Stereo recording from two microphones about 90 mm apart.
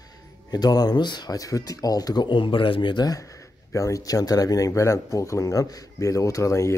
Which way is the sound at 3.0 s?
40° left (ahead or behind).